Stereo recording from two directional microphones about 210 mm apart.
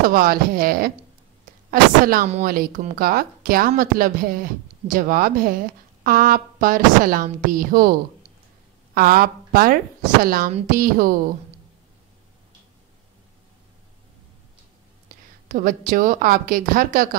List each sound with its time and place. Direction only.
0.1 s a woman's voice: 45° right (ahead or behind)
8.9 s speech: 45° right (ahead or behind)
15.4 s a woman's voice: 40° right (ahead or behind)